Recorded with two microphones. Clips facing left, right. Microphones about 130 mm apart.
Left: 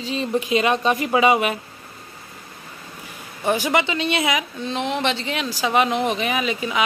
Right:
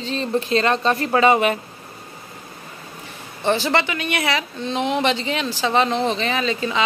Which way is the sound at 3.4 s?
10° left (ahead or behind).